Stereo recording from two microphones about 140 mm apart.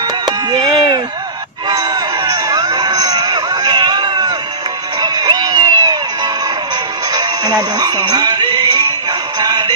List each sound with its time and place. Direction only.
0.2 s chop: 30° right (ahead or behind)
1.7 s crowd: 25° right (ahead or behind)
5.0 s music: 25° right (ahead or behind)